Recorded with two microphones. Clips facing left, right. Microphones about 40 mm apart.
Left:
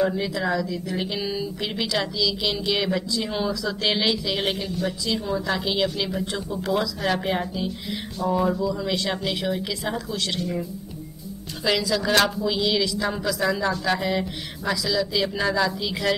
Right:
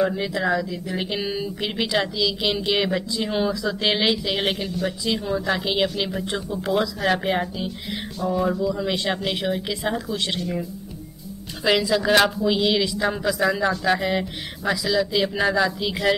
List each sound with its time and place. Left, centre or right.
0.0 s speech: centre
7.0 s speech: centre
8.2 s music: centre
8.8 s speech: right
10.4 s music: centre
11.6 s speech: centre